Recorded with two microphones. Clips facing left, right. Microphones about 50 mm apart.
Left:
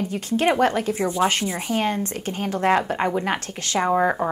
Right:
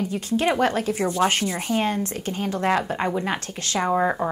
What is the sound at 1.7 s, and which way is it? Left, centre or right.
Speech, left.